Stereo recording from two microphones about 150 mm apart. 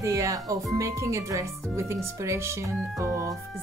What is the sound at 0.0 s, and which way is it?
Speech, 20° right (ahead or behind).